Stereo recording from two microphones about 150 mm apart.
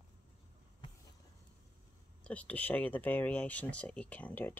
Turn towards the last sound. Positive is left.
turn(degrees=10)  # may be behind; listen again after turning